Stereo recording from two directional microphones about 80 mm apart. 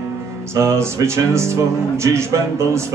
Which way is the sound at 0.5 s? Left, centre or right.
Right.